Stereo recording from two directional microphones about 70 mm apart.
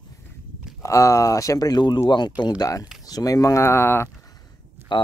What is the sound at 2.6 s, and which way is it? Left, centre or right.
Speech, left.